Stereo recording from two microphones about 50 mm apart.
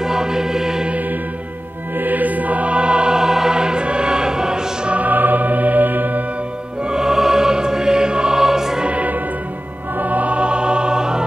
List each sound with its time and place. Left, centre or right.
0.0 s music: centre
2.0 s music: right; by 4.9 s centre
4.9 s music: right
6.8 s music: centre
8.8 s music: right